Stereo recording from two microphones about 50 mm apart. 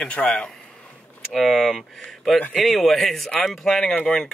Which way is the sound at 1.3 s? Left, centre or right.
Centre.